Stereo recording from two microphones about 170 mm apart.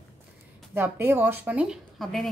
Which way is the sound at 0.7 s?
15° right (ahead or behind).